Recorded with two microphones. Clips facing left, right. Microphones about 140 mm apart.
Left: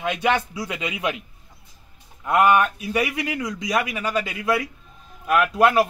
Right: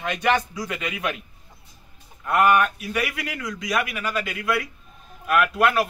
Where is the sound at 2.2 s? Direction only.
20° left (ahead or behind).